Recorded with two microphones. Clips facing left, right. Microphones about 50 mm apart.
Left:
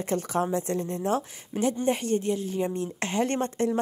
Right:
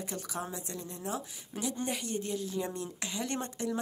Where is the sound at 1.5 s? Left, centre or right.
Left.